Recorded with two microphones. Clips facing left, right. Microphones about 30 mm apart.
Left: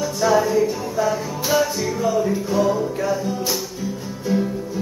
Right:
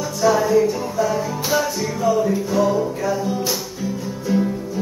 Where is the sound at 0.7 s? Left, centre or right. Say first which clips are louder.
Right 1 dB; centre.